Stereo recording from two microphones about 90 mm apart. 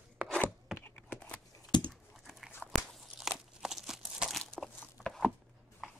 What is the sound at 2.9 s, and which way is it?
Crunch, 5° right (ahead or behind).